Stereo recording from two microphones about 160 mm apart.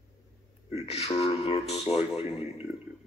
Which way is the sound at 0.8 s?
40° left (ahead or behind).